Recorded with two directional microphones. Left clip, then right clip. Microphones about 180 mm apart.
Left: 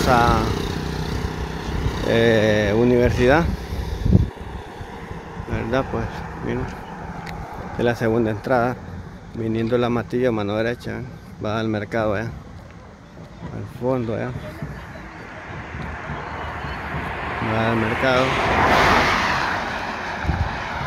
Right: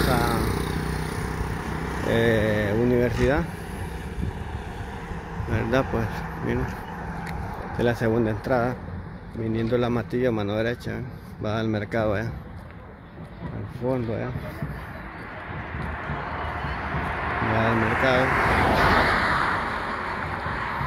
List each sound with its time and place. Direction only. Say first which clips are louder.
0.0 s vehicle: left 7 dB; 15° left (ahead or behind); by 2.0 s centre (ahead or behind)
2.0 s speech: left 5 dB; 10° left (ahead or behind)
5.5 s speech: left 1 dB; 5° right (ahead or behind)
13.8 s speech: left 4 dB; 25° left (ahead or behind)
15.8 s vehicle: left 1 dB; 30° right (ahead or behind)
18.2 s speech: left 2 dB; 20° right (ahead or behind)
18.9 s vehicle: left 3 dB; 55° left (ahead or behind)